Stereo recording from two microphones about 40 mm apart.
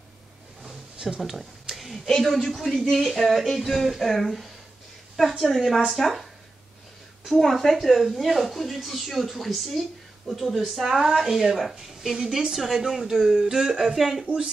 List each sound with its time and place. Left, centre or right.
1.2 s a sound: centre
2.4 s speech: centre
7.2 s speech: centre
14.2 s speech: right